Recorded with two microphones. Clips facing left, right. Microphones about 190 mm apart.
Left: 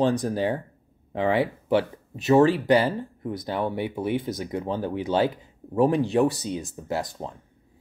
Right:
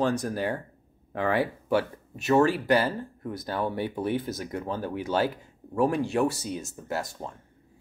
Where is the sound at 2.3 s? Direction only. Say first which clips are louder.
Left 4 dB; 30° left (ahead or behind).